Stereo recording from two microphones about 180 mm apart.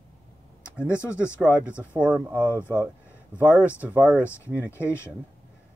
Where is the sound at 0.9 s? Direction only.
15° left (ahead or behind).